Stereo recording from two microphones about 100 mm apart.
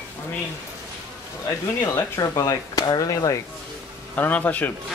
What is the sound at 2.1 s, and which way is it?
Speech, 35° left (ahead or behind).